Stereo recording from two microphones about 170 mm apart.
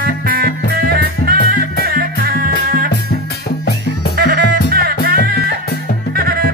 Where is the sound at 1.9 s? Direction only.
60° right (ahead or behind).